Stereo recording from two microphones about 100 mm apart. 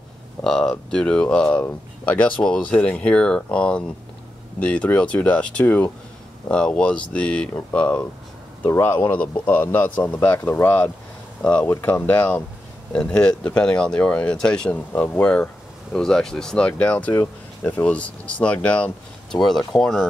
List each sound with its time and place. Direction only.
0.4 s speech: 5° left (ahead or behind)
8.6 s speech: 25° left (ahead or behind)
17.1 s speech: 25° left (ahead or behind); by 20.1 s 5° left (ahead or behind)